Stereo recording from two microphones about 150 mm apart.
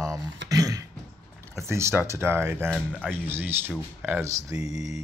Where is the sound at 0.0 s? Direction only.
20° right (ahead or behind).